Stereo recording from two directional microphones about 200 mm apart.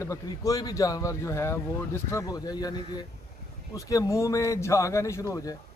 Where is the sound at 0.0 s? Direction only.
15° left (ahead or behind).